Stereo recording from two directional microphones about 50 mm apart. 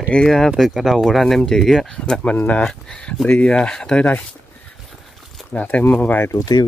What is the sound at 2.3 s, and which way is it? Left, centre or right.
Speech, left.